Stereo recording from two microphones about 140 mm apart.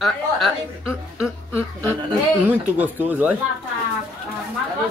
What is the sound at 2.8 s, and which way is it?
Speech, 10° right (ahead or behind).